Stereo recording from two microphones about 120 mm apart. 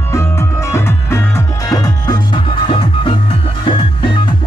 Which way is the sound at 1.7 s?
30° left (ahead or behind).